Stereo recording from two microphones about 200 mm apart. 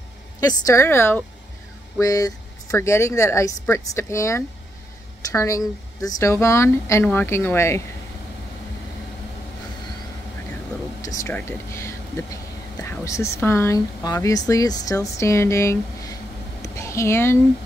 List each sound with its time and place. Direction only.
0.4 s speech: 20° left (ahead or behind)
11.0 s speech: 15° left (ahead or behind)
16.6 s a sound: 15° left (ahead or behind)